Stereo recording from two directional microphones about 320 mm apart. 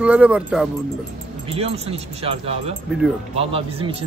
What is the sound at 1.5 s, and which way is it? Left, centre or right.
A man's voice, centre.